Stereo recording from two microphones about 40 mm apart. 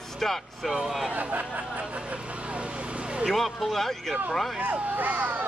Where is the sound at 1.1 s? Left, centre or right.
Right.